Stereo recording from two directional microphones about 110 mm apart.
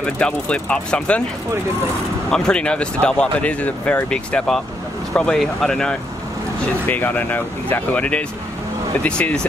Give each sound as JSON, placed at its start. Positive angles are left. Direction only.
{"t": 0.0, "sound": "speech", "side_deg": 10}
{"t": 2.3, "sound": "speech", "side_deg": 10}
{"t": 6.6, "sound": "speech", "side_deg": 15}